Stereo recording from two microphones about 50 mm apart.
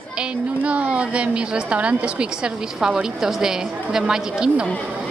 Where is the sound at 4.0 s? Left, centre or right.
Centre.